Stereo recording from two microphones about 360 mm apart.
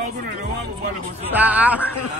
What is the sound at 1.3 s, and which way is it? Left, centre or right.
Speech, centre.